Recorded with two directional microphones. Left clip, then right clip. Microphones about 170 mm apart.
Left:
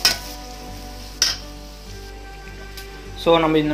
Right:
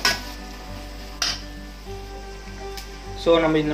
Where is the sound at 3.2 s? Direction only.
40° left (ahead or behind).